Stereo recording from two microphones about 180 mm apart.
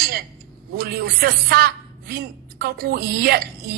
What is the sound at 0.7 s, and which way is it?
Speech, 60° right (ahead or behind).